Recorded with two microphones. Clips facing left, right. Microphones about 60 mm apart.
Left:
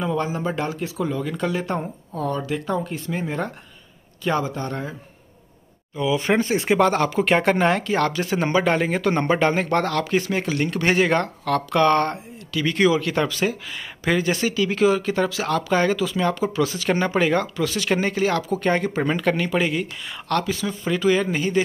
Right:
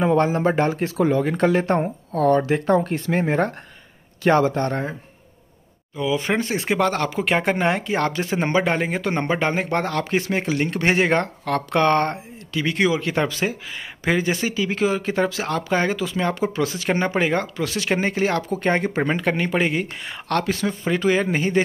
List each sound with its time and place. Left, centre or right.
0.0 s speech: right
1.2 s speech: right
2.1 s speech: right
5.9 s speech: centre
7.5 s speech: centre
9.3 s speech: centre; by 20.7 s right
20.8 s speech: right